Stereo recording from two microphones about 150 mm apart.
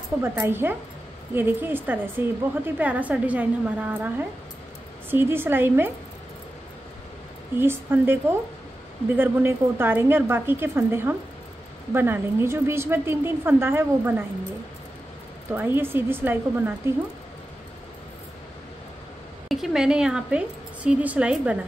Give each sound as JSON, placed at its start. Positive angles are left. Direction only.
{"t": 0.2, "sound": "a woman's voice", "side_deg": -15}
{"t": 5.1, "sound": "a woman's voice", "side_deg": -15}
{"t": 7.5, "sound": "a woman's voice", "side_deg": -15}
{"t": 15.5, "sound": "a woman's voice", "side_deg": -15}
{"t": 19.5, "sound": "a woman's voice", "side_deg": 0}